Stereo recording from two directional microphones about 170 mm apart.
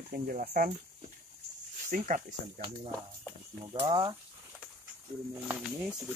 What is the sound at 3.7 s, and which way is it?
Speech, 30° right (ahead or behind).